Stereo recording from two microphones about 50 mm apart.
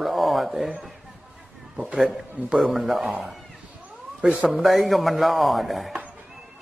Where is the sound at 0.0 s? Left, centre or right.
Centre.